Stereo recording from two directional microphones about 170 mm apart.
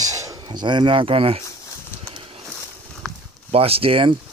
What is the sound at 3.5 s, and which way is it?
Speech, 35° right (ahead or behind).